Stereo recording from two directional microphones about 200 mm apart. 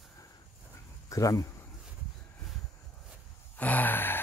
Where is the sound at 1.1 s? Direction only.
15° left (ahead or behind).